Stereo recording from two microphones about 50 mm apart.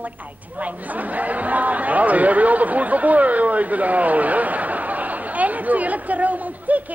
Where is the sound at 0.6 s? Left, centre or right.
Right.